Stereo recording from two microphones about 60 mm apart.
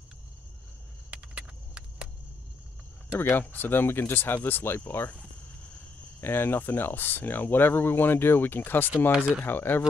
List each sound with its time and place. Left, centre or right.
1.1 s a sound: centre
3.2 s speech: left
6.2 s speech: left
9.1 s speech: centre
9.4 s speech: left